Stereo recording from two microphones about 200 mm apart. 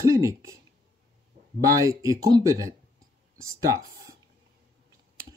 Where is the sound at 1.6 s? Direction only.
15° right (ahead or behind).